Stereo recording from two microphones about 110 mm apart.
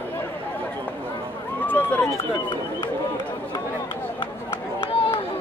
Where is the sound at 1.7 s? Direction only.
15° left (ahead or behind).